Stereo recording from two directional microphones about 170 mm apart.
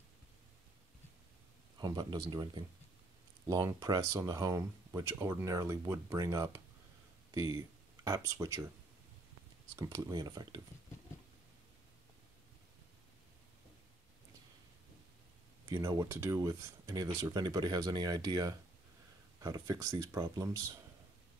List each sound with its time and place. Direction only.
1.8 s speech: 25° right (ahead or behind)
9.8 s speech: 20° right (ahead or behind)
15.7 s speech: 20° right (ahead or behind)